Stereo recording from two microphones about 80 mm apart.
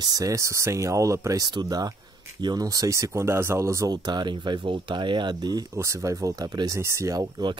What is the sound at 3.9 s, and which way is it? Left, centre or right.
Speech, right.